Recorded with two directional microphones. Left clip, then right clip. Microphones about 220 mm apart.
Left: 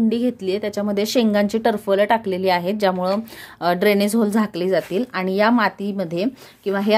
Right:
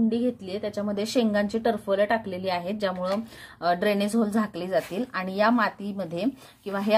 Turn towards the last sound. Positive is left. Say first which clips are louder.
# left 5 dB
turn(degrees=40)  # may be behind; listen again after turning